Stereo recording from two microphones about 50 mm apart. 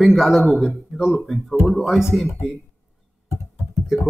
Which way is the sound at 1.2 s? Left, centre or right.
Centre.